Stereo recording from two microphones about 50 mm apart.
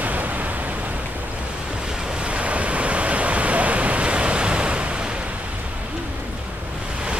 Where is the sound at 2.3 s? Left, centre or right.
Right.